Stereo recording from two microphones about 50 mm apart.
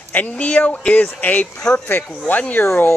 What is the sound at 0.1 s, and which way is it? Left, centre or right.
Speech, left.